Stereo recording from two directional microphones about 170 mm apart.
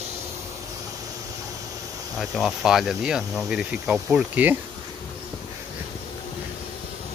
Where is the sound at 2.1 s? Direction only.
Centre (ahead or behind).